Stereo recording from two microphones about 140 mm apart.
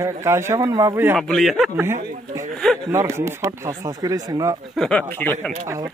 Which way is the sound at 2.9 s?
20° right (ahead or behind).